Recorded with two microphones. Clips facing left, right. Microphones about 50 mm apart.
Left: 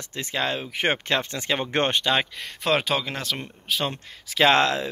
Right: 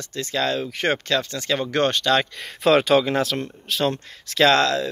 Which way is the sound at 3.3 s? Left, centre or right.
Centre.